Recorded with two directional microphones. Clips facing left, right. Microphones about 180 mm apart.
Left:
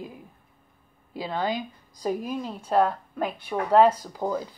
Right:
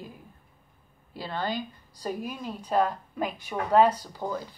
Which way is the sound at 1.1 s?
10° left (ahead or behind).